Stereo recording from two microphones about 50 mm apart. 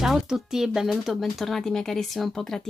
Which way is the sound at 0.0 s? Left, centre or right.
Centre.